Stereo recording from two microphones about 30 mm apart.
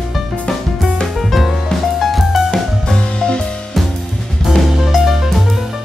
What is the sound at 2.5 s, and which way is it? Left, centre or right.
Music, left.